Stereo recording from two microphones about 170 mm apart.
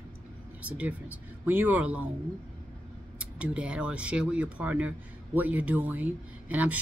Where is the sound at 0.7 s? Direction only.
10° right (ahead or behind).